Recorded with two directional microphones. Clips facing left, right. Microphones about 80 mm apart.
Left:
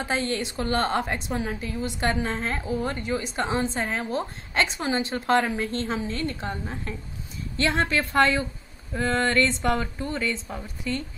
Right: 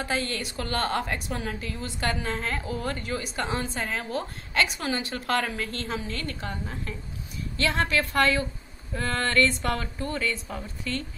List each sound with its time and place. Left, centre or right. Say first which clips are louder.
0.0 s a woman's voice: left 3 dB; left